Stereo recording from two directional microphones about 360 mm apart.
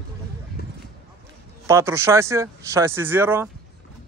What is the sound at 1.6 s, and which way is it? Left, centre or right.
Speech, centre.